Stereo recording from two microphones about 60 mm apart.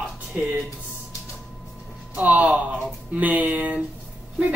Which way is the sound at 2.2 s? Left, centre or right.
Right.